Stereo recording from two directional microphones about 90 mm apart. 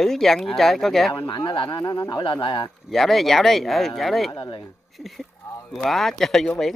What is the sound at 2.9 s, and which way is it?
Speech, centre (ahead or behind).